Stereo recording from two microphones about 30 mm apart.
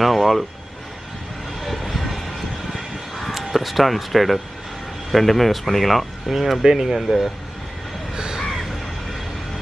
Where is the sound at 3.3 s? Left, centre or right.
Centre.